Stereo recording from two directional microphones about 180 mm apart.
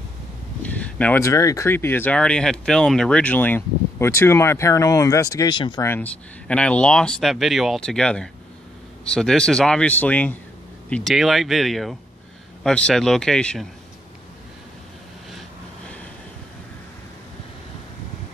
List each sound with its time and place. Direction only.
0.6 s speech: 5° left (ahead or behind)
5.9 s speech: 5° left (ahead or behind)